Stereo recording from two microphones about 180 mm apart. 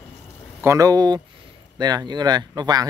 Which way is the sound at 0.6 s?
20° right (ahead or behind).